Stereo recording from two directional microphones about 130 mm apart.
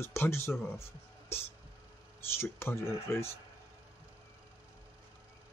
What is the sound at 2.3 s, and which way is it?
Speech, 20° left (ahead or behind).